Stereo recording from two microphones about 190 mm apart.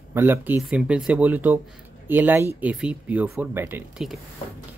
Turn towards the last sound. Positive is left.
turn(degrees=-5)  # may be behind; listen again after turning